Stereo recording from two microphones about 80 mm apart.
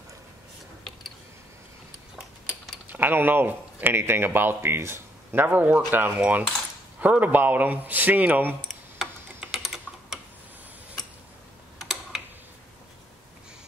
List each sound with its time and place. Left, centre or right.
2.9 s speech: right
8.9 s tick-tock: centre
11.8 s typing: centre